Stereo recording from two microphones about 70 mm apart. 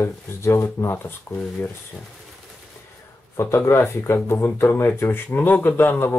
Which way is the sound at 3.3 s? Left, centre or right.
Left.